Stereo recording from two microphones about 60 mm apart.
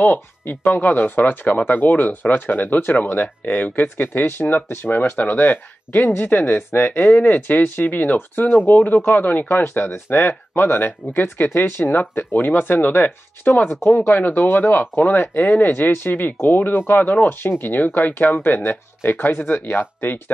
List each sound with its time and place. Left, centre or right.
0.0 s speech: left